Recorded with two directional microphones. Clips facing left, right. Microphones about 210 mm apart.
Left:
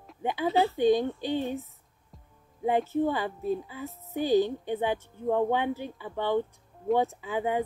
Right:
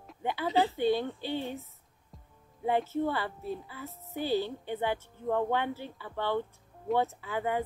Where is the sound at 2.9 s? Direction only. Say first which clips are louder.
Left 4 dB; 15° left (ahead or behind).